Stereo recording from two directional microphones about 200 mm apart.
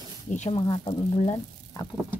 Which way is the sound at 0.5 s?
25° left (ahead or behind).